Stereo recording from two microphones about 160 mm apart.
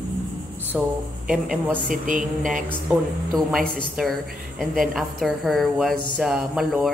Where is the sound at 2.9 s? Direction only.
Centre (ahead or behind).